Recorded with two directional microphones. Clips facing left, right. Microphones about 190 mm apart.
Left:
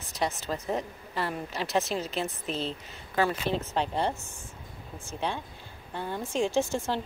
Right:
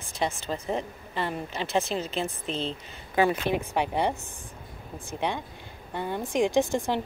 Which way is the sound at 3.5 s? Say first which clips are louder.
Right 2 dB; 15° right (ahead or behind).